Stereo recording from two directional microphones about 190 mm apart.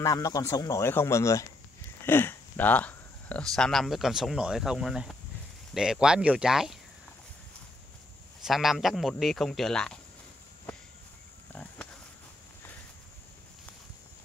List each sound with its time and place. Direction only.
0.0 s a man's voice: 20° left (ahead or behind); by 6.8 s 5° right (ahead or behind)
8.5 s a man's voice: centre (ahead or behind)